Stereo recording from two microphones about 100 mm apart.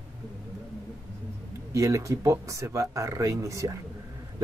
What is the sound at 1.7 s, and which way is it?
Speech, 30° right (ahead or behind).